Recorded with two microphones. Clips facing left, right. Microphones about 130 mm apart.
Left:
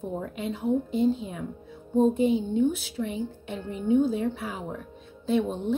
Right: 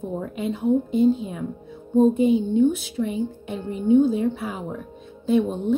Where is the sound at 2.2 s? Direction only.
15° right (ahead or behind).